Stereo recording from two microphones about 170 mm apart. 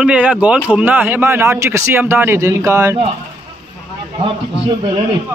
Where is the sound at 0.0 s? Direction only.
5° right (ahead or behind).